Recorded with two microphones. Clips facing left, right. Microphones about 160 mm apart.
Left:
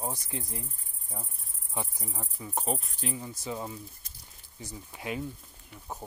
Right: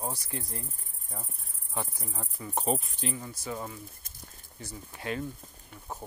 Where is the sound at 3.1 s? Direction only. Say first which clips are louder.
Left 1 dB; 15° left (ahead or behind).